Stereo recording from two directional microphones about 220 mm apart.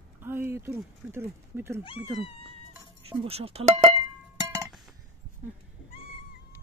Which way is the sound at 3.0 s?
25° right (ahead or behind).